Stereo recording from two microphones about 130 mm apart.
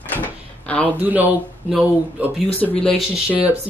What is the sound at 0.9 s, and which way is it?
Speech, 15° right (ahead or behind).